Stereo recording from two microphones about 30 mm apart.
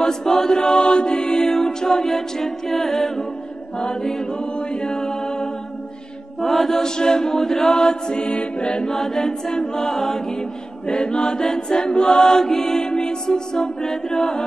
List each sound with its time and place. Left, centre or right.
0.0 s mantra: centre
1.4 s music: centre
2.7 s chant: centre
4.3 s a capella: left
6.4 s mantra: centre
6.8 s chant: left
7.8 s chant: left
8.3 s music: left
8.6 s chant: left
8.9 s chant: centre
10.9 s chant: left; by 12.8 s centre
12.8 s chant: left